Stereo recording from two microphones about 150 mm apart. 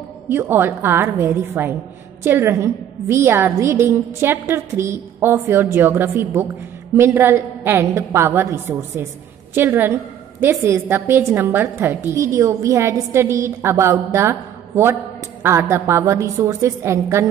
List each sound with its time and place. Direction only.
0.3 s a woman's voice: 15° right (ahead or behind)
15.4 s a woman's voice: 20° right (ahead or behind)